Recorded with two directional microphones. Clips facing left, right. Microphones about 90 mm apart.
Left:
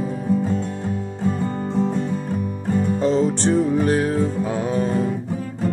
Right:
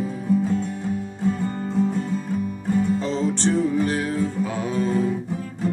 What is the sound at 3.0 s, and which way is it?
Music, 45° left (ahead or behind).